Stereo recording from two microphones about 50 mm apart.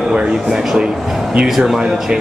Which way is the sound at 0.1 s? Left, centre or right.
Centre.